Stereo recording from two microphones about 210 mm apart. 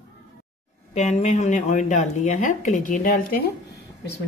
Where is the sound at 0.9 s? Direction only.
35° left (ahead or behind).